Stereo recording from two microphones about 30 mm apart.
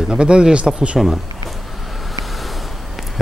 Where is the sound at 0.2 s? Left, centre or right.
Right.